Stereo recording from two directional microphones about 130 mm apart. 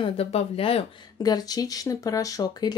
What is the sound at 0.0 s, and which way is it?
Speech, 45° left (ahead or behind).